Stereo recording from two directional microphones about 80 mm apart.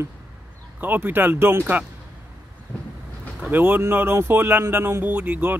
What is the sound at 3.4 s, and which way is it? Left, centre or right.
A man's voice, right.